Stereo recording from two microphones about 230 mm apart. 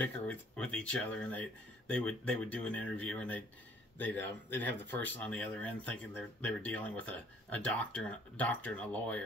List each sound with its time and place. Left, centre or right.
0.0 s speech: centre